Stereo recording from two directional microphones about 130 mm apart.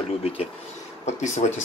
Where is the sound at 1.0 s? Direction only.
65° left (ahead or behind).